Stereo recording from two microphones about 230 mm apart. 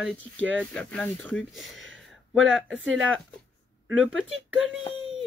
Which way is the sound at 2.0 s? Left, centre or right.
Centre.